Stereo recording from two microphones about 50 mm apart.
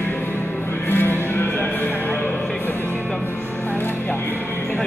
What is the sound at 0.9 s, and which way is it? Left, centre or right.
Music, left.